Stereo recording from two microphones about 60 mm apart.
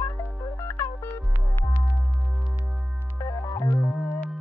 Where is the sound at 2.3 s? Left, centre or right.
Centre.